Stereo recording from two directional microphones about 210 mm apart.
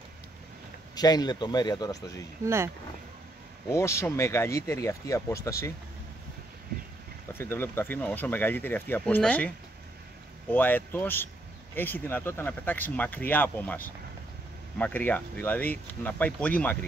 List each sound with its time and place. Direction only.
0.9 s speech: 20° left (ahead or behind)
2.4 s speech: 10° right (ahead or behind)
3.6 s speech: 15° left (ahead or behind)
7.3 s speech: 10° left (ahead or behind)
10.5 s speech: 10° left (ahead or behind)